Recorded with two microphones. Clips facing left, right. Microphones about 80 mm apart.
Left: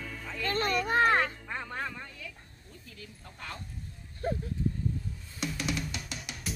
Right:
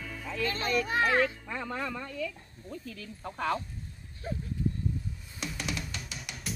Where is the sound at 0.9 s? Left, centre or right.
Left.